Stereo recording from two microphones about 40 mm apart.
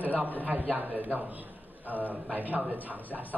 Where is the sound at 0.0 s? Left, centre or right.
Right.